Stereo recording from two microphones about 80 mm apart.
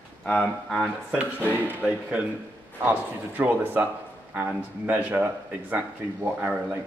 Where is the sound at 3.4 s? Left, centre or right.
Right.